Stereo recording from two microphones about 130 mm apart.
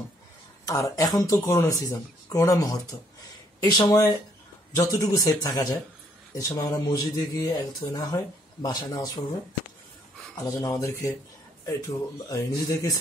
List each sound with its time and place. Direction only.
0.7 s speech: 25° left (ahead or behind)
10.3 s speech: 25° left (ahead or behind)
12.3 s speech: 25° left (ahead or behind)